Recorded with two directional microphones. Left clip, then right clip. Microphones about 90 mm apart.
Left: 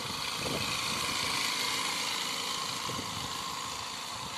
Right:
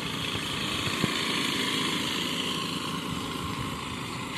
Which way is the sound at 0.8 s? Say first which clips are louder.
Right 3 dB; 55° left (ahead or behind).